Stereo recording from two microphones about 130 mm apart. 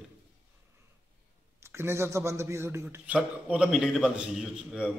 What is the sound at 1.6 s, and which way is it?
A man's voice, 20° right (ahead or behind).